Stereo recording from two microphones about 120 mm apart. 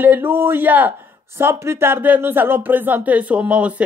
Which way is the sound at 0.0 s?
15° right (ahead or behind).